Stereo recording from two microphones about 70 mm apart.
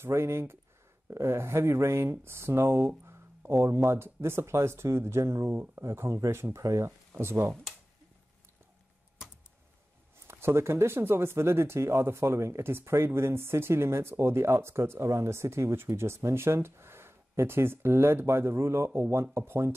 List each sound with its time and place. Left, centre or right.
0.0 s speech: right
10.1 s speech: right